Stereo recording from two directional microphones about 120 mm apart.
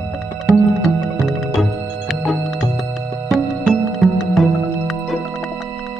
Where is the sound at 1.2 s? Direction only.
Centre (ahead or behind).